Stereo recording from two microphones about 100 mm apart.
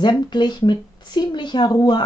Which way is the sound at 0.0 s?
50° left (ahead or behind).